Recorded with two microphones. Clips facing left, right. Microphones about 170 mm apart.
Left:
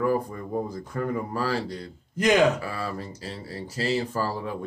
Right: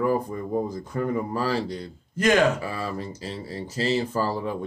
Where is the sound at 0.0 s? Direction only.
20° right (ahead or behind).